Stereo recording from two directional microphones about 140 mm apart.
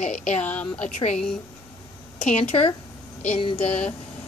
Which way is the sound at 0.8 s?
55° left (ahead or behind).